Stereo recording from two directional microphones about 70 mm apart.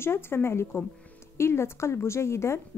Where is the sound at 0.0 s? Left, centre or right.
Left.